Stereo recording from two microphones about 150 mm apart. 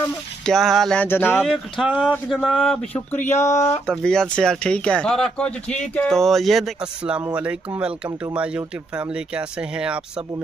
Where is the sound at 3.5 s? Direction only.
50° left (ahead or behind).